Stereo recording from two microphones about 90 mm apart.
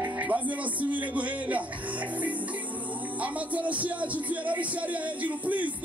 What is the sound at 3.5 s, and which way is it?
Music, 15° right (ahead or behind).